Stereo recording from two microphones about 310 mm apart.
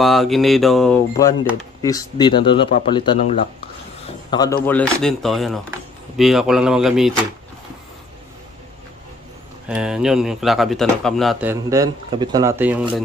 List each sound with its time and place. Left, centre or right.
0.0 s speech: centre
9.7 s speech: centre